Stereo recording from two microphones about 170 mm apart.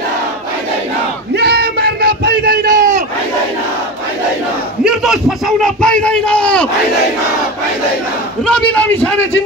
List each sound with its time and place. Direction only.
1.3 s a sound: 75° right (ahead or behind); by 3.0 s 55° right (ahead or behind)
4.8 s a man's voice: 5° right (ahead or behind)
8.5 s a man's voice: 5° left (ahead or behind)